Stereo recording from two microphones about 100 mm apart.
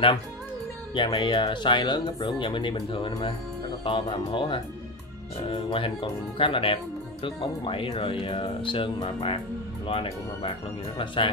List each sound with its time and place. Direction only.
0.9 s speech: 50° left (ahead or behind)
2.1 s speech: 65° left (ahead or behind)